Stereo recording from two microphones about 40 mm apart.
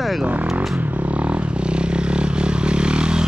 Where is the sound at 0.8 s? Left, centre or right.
Right.